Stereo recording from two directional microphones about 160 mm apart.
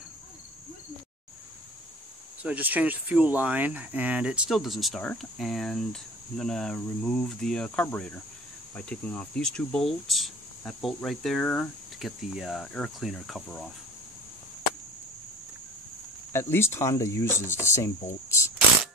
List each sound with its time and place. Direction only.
2.4 s speech: 10° right (ahead or behind)
16.3 s speech: 15° left (ahead or behind)